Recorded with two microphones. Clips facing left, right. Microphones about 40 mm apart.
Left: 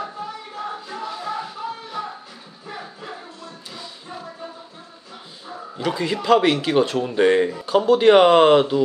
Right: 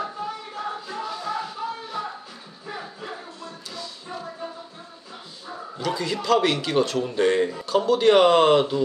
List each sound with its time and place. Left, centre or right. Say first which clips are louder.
0.0 s music: even; centre
3.7 s music: right 1 dB; centre
5.8 s a man's voice: left 3 dB; centre